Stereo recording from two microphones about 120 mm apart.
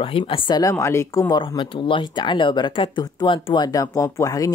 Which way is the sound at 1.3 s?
40° left (ahead or behind).